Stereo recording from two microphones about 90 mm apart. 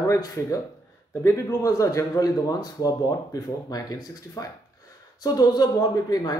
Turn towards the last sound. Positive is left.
turn(degrees=45)  # may be behind; listen again after turning